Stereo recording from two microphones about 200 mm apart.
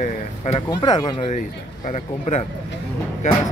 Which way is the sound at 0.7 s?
20° left (ahead or behind).